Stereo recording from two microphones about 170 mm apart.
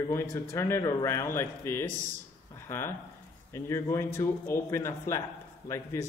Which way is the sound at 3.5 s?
15° left (ahead or behind).